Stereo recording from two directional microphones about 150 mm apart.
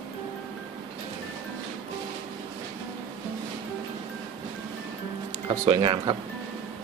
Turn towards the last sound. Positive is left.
turn(degrees=-30)  # may be behind; listen again after turning